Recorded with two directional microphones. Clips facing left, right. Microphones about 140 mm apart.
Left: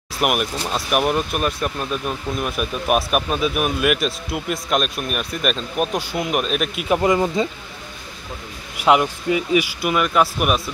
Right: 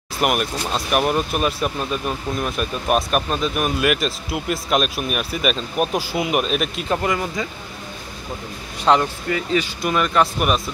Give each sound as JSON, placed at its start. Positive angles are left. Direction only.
{"t": 0.2, "sound": "speech", "side_deg": 5}
{"t": 7.0, "sound": "speech", "side_deg": 25}
{"t": 8.7, "sound": "speech", "side_deg": 10}